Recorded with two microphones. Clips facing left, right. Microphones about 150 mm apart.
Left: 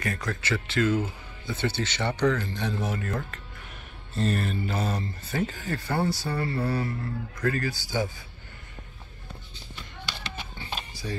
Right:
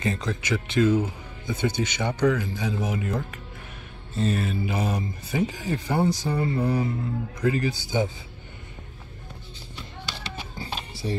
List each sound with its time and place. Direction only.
0.0 s speech: 20° right (ahead or behind)
4.1 s speech: centre (ahead or behind); by 8.1 s 20° right (ahead or behind)
10.1 s music: 35° right (ahead or behind)
10.7 s music: 25° right (ahead or behind)